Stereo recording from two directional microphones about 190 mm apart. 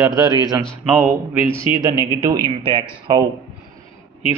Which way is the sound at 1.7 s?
30° left (ahead or behind).